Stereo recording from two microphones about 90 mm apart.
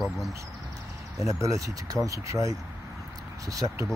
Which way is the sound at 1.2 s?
35° right (ahead or behind).